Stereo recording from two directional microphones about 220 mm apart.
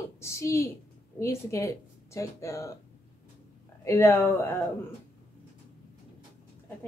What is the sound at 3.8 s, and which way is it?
Speech, 10° left (ahead or behind).